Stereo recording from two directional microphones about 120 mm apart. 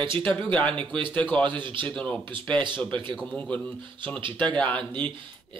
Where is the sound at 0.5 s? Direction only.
10° left (ahead or behind).